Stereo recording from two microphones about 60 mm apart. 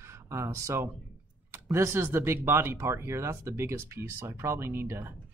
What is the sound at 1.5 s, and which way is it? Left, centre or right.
Speech, right.